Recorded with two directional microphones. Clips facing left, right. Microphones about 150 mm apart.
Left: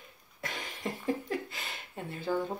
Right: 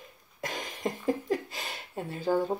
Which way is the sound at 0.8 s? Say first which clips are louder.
Right 4 dB; 40° right (ahead or behind).